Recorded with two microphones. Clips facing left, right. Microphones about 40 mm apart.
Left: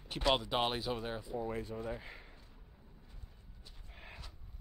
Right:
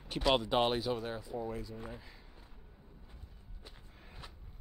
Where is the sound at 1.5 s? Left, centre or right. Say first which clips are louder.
Left 1 dB; left.